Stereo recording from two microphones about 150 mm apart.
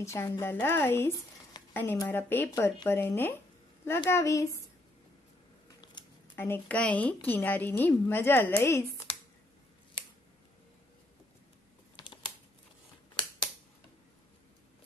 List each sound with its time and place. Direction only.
0.0 s a woman's voice: 15° left (ahead or behind)
6.0 s a sound: 30° left (ahead or behind)
6.3 s a woman's voice: 15° left (ahead or behind)